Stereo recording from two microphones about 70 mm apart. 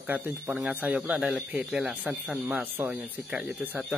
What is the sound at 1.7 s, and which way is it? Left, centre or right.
Speech, centre.